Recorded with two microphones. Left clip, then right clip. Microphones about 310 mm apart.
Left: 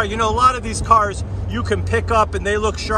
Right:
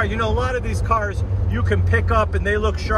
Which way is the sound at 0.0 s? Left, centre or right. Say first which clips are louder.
Left 7 dB; centre.